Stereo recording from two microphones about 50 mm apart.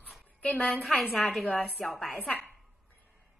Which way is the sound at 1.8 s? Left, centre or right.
Centre.